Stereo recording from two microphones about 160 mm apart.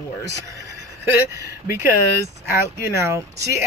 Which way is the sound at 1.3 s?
20° right (ahead or behind).